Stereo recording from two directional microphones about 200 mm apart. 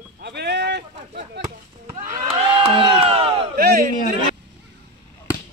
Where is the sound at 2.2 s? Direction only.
25° right (ahead or behind).